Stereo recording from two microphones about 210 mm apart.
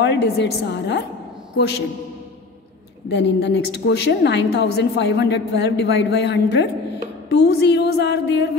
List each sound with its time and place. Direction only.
0.0 s a woman's voice: 55° left (ahead or behind)
3.1 s a woman's voice: 55° left (ahead or behind)